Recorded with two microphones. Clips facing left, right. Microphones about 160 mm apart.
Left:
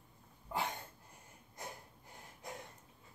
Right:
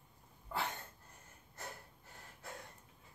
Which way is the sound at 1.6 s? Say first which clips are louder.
Left 1 dB; 10° left (ahead or behind).